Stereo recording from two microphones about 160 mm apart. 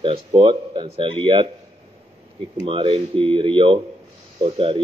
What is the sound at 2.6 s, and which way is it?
Speech, 35° right (ahead or behind).